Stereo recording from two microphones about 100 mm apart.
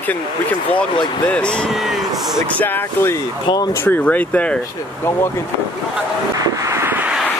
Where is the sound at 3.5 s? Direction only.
40° left (ahead or behind).